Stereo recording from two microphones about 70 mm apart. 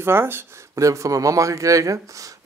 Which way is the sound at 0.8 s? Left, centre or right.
Right.